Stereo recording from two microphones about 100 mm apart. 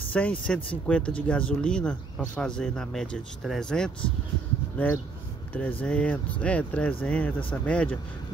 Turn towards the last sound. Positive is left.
turn(degrees=15)  # may be behind; listen again after turning